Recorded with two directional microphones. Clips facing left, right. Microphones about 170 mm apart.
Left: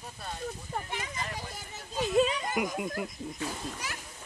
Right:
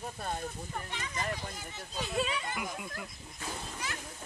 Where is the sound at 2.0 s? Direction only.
40° left (ahead or behind).